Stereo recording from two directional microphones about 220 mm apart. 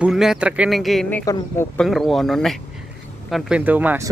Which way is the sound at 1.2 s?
15° left (ahead or behind).